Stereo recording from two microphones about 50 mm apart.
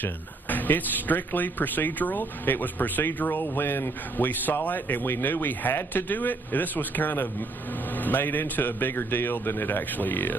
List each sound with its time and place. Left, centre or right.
0.0 s speech: left